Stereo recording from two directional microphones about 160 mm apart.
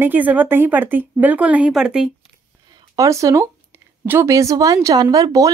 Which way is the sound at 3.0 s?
20° right (ahead or behind).